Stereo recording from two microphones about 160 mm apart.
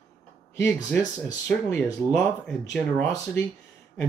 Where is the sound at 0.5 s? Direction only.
15° left (ahead or behind).